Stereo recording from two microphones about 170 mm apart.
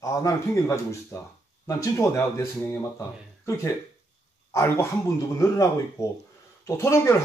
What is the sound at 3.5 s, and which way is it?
Speech, 15° left (ahead or behind).